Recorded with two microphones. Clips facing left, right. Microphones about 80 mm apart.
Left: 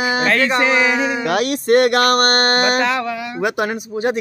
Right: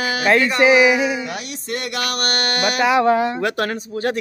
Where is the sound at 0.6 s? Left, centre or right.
Centre.